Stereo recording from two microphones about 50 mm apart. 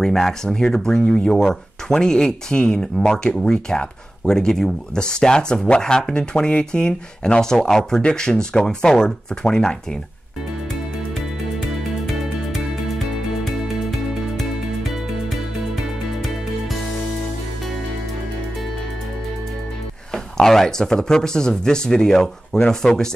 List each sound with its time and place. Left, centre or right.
0.0 s speech: centre
20.3 s speech: centre